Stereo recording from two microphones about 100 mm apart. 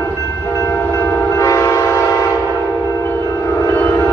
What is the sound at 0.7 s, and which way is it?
Train, 15° left (ahead or behind).